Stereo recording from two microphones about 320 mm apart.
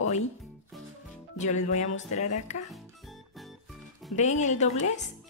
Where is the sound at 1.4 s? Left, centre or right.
Left.